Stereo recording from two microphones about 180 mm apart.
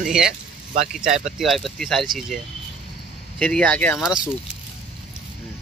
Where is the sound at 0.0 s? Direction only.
5° right (ahead or behind).